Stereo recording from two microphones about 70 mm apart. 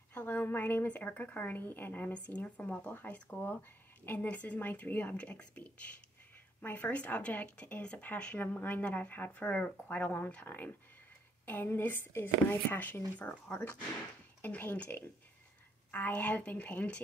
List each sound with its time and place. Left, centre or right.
0.1 s speech: left